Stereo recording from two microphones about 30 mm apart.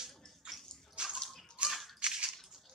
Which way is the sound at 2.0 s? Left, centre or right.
Right.